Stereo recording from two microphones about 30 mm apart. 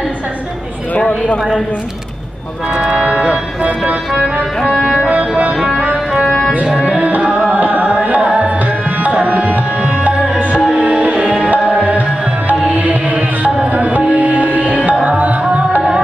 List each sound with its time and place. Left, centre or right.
0.9 s a sound: left
2.7 s speech: right
4.7 s music: centre
7.0 s tabla: right
7.5 s carnatic music: right
9.1 s tabla: right
10.8 s music: right
11.7 s tabla: right
12.4 s music: right
15.0 s tabla: right